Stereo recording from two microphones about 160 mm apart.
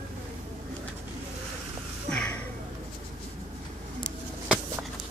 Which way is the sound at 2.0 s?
5° left (ahead or behind).